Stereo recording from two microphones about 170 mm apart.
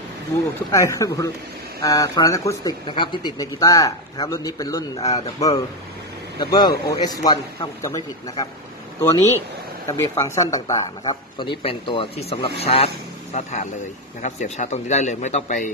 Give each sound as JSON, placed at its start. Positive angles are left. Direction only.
{"t": 0.7, "sound": "a man's voice", "side_deg": 20}